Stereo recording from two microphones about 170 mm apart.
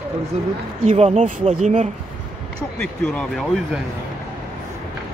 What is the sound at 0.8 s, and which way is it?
Speech, 40° right (ahead or behind).